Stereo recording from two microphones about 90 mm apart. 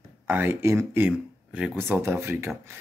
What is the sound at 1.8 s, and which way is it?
Speech, 25° right (ahead or behind).